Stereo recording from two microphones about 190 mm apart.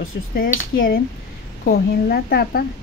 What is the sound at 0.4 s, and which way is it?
A woman's voice, 50° left (ahead or behind).